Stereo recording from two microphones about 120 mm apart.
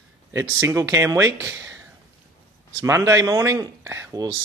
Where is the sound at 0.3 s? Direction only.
25° right (ahead or behind).